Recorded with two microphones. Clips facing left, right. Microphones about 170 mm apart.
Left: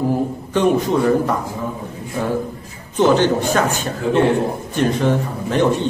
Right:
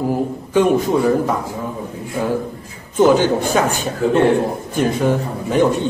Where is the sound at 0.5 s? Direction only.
10° right (ahead or behind).